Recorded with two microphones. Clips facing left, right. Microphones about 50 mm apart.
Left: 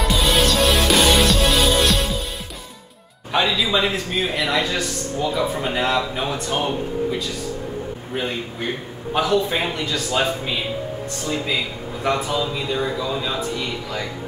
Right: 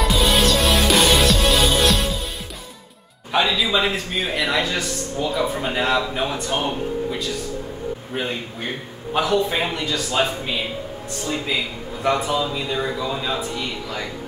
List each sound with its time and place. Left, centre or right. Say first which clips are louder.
0.1 s music: left 1 dB; centre
3.3 s a man's voice: even; centre